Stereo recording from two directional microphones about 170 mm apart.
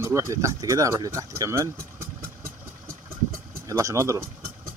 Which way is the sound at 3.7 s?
20° right (ahead or behind).